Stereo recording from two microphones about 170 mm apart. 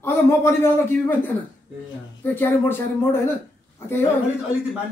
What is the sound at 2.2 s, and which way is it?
Speech, 10° left (ahead or behind).